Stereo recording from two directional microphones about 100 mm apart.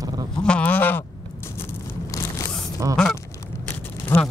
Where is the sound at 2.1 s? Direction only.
35° left (ahead or behind).